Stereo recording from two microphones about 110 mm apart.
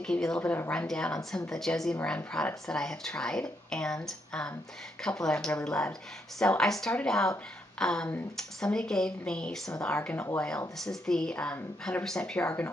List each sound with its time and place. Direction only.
0.0 s a woman's voice: 5° left (ahead or behind)
10.1 s speech: 25° left (ahead or behind)
10.8 s a woman's voice: 5° left (ahead or behind)